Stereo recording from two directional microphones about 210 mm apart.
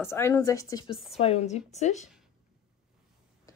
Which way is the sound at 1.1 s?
30° left (ahead or behind).